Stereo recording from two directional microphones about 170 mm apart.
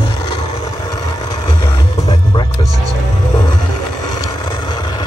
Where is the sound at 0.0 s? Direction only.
25° left (ahead or behind).